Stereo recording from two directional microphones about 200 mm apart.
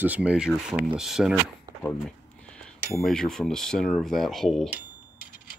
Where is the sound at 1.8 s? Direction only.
5° left (ahead or behind).